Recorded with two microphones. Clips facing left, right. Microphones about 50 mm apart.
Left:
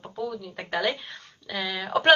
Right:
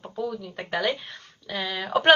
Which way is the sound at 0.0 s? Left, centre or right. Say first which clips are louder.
Right 2 dB; centre.